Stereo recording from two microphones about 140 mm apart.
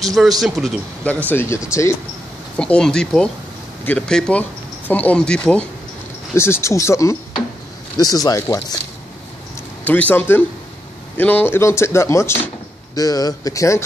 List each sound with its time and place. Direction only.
0.0 s speech: centre (ahead or behind)
1.0 s speech: 15° left (ahead or behind)
2.5 s speech: 5° left (ahead or behind)
6.3 s speech: 20° left (ahead or behind)
9.8 s speech: 10° left (ahead or behind)